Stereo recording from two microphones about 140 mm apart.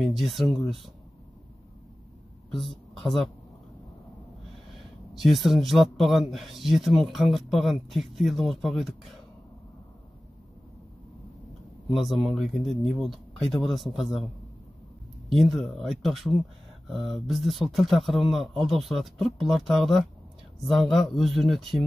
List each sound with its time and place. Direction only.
0.0 s a man's voice: centre (ahead or behind)
2.5 s speech: centre (ahead or behind)
5.1 s a man's voice: centre (ahead or behind)
11.9 s a man's voice: centre (ahead or behind)
15.3 s a man's voice: centre (ahead or behind)